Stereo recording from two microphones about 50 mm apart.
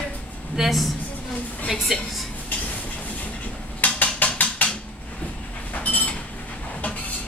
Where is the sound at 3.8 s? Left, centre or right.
Left.